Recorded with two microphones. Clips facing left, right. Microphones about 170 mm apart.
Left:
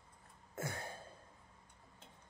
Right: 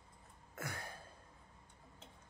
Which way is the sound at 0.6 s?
25° left (ahead or behind).